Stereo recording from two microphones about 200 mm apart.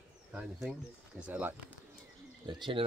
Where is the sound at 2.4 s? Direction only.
20° right (ahead or behind).